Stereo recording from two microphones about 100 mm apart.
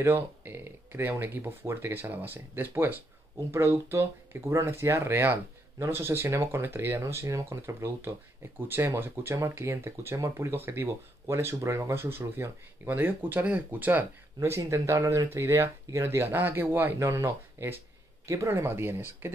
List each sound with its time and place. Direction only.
0.0 s speech: 25° right (ahead or behind)